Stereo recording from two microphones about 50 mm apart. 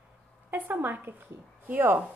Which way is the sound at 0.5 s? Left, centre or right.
Right.